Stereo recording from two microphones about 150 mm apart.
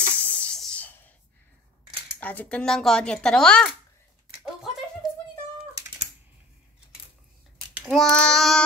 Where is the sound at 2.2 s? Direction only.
10° left (ahead or behind).